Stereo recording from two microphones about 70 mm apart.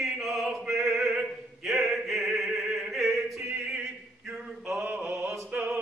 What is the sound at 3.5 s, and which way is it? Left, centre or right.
Male singing, centre.